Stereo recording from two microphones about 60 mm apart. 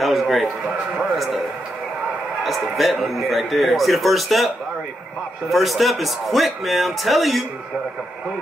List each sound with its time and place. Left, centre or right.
0.0 s a man's voice: centre
2.4 s a man's voice: centre
5.5 s a man's voice: centre